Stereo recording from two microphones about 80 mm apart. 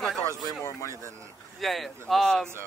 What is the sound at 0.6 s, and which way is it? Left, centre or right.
Speech, left.